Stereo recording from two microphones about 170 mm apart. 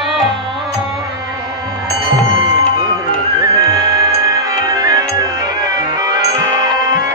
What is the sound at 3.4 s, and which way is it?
Music, 20° right (ahead or behind).